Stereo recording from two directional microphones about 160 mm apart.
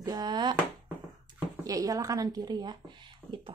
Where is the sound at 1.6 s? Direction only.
20° right (ahead or behind).